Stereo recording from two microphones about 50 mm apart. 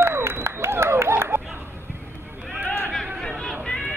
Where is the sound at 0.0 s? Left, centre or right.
Right.